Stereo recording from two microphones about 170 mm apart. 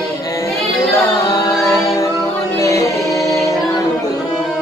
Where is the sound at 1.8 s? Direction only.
20° left (ahead or behind).